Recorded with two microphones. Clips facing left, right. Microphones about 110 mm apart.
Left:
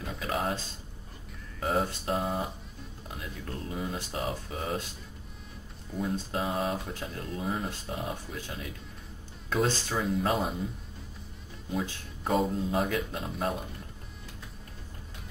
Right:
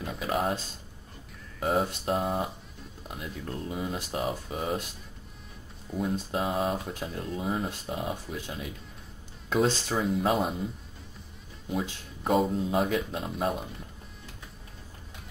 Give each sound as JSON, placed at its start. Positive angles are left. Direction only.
{"t": 0.0, "sound": "a sound", "side_deg": -5}
{"t": 1.6, "sound": "a man's voice", "side_deg": -5}
{"t": 5.9, "sound": "a man's voice", "side_deg": -5}
{"t": 9.9, "sound": "a man's voice", "side_deg": -5}
{"t": 12.3, "sound": "a man's voice", "side_deg": -5}